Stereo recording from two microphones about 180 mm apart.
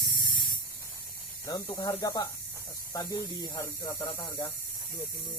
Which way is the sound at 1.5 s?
20° left (ahead or behind).